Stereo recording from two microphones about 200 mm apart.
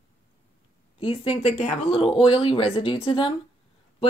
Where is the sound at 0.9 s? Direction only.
25° left (ahead or behind).